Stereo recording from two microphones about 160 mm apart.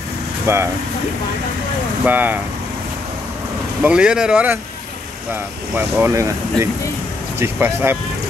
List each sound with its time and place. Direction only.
0.5 s speech: 15° right (ahead or behind)
2.0 s speech: 10° right (ahead or behind)
3.8 s speech: 5° right (ahead or behind)
5.9 s speech: 15° right (ahead or behind)